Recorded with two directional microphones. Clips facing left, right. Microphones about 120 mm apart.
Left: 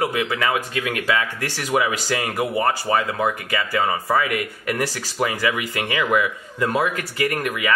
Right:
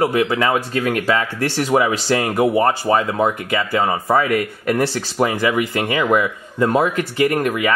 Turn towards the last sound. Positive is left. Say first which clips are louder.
# right 5 dB
turn(degrees=-30)  # may be behind; listen again after turning